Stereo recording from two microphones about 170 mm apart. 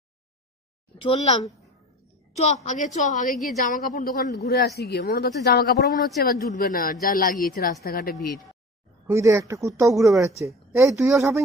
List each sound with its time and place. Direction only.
1.0 s a woman's voice: 40° left (ahead or behind)
3.6 s a man's voice: 60° left (ahead or behind)
8.2 s speech: centre (ahead or behind)
9.0 s speech: 15° right (ahead or behind)